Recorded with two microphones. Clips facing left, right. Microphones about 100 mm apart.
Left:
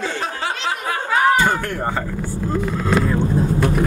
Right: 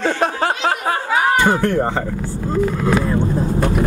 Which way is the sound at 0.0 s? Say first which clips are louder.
Right 6 dB; 55° right (ahead or behind).